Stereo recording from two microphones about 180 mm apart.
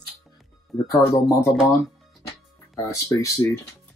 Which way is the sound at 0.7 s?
15° left (ahead or behind).